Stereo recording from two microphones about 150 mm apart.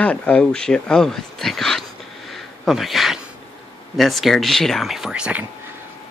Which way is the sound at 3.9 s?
Centre (ahead or behind).